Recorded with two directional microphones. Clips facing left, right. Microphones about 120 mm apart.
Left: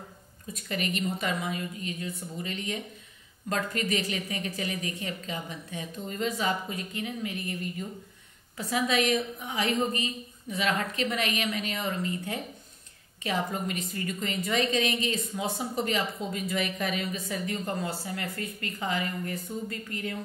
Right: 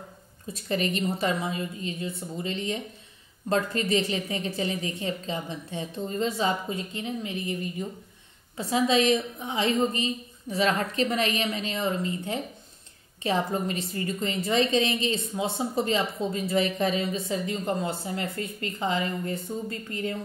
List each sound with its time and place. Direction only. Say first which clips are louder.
0.5 s a woman's voice: right 4 dB; 30° right (ahead or behind)